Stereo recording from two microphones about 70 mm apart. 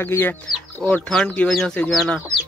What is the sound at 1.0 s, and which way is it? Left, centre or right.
Speech, centre.